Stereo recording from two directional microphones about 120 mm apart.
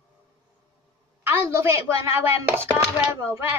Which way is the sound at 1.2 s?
20° right (ahead or behind).